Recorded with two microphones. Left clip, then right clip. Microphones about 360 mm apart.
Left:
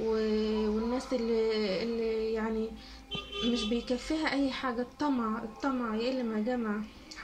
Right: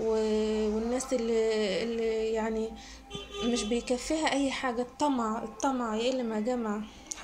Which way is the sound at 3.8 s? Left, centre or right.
Centre.